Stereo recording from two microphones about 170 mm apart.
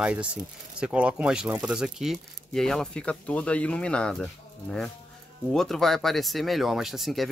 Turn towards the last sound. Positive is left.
turn(degrees=0)  # may be behind; listen again after turning